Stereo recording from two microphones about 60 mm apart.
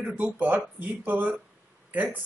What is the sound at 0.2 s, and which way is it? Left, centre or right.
A man's voice, right.